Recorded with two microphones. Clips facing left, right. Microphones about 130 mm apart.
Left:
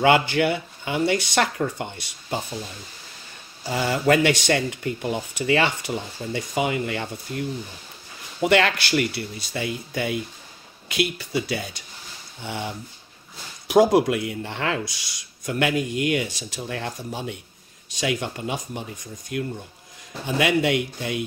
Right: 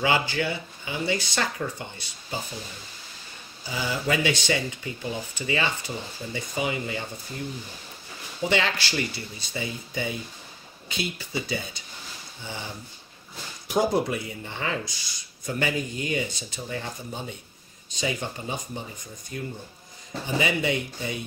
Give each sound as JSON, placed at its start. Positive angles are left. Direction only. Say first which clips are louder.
{"t": 0.0, "sound": "speech", "louder": "left 6 dB", "side_deg": 60}
{"t": 3.6, "sound": "speech", "louder": "left 7 dB", "side_deg": 65}
{"t": 13.7, "sound": "speech", "louder": "left 7 dB", "side_deg": 85}